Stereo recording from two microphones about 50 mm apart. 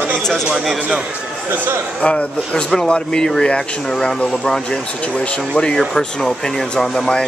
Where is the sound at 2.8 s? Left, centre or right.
Centre.